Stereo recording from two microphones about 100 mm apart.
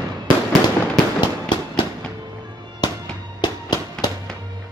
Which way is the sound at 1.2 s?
50° left (ahead or behind).